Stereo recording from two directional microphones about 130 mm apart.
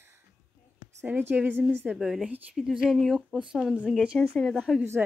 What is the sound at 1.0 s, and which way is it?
A woman's voice, 15° right (ahead or behind).